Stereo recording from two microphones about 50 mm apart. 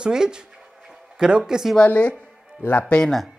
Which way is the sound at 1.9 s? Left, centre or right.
Left.